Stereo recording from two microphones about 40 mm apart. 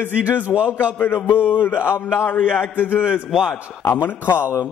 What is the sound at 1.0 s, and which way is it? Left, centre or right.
Speech, left.